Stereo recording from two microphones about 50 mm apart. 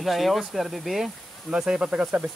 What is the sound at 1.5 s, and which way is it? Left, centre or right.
Speech, centre.